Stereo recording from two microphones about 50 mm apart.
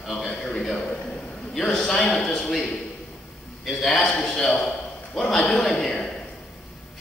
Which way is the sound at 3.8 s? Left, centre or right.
Centre.